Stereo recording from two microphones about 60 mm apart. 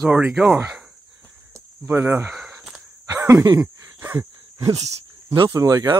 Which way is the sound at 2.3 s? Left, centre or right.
Centre.